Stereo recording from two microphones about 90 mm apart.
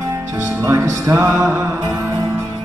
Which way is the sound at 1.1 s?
35° right (ahead or behind).